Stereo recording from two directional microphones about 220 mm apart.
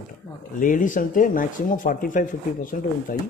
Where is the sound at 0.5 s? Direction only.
35° left (ahead or behind).